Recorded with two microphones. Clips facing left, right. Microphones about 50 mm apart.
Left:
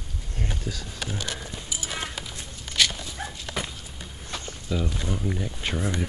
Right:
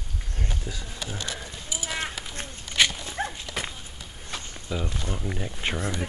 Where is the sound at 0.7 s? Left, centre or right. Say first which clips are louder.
Left 3 dB; centre.